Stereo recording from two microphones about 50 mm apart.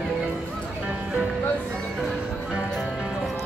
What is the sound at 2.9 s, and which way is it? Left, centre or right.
Music, centre.